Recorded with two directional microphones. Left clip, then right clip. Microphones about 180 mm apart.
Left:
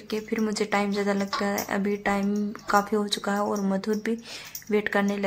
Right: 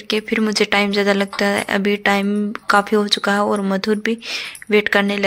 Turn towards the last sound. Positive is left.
turn(degrees=-25)  # may be behind; listen again after turning